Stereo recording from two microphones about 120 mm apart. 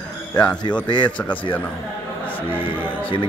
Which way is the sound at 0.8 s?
40° left (ahead or behind).